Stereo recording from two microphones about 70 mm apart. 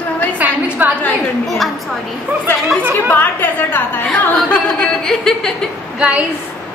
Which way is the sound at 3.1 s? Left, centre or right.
Left.